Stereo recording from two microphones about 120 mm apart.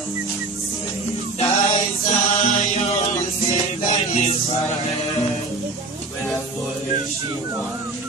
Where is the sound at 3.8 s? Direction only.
55° left (ahead or behind).